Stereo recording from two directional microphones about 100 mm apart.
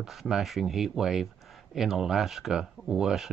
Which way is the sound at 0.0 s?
5° right (ahead or behind).